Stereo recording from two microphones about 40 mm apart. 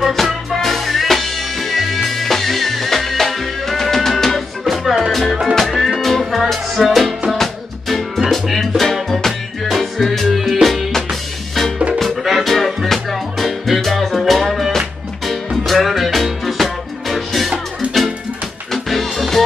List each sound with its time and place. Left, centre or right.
0.1 s music: centre
17.8 s music: right
18.7 s music: centre